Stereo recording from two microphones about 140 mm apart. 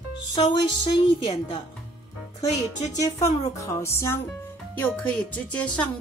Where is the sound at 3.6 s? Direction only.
20° left (ahead or behind).